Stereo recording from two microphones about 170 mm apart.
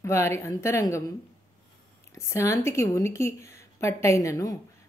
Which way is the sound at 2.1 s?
15° left (ahead or behind).